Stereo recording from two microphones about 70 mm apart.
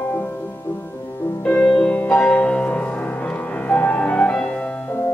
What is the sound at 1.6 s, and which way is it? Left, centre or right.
Music, centre.